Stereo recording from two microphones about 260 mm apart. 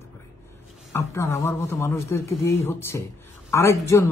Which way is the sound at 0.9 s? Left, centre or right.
Centre.